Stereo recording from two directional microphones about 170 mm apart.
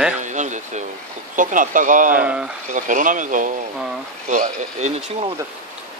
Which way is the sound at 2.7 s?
50° right (ahead or behind).